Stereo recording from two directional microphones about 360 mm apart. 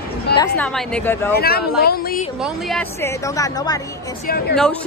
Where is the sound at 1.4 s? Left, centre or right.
Left.